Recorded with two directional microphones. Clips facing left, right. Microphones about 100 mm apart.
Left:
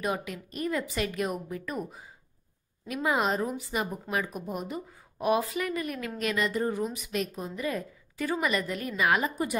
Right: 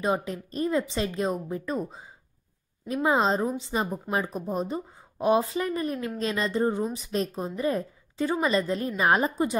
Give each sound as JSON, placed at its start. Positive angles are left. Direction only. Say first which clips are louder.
{"t": 0.0, "sound": "a woman's voice", "louder": "right 5 dB", "side_deg": -30}